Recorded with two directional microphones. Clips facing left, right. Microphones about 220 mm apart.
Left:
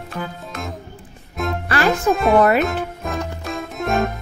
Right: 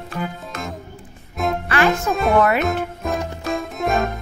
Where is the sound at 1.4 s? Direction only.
Centre (ahead or behind).